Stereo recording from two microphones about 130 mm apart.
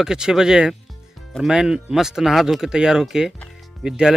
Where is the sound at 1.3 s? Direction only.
5° right (ahead or behind).